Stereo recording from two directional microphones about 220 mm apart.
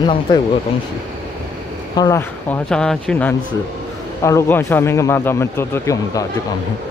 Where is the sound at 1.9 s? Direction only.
20° left (ahead or behind).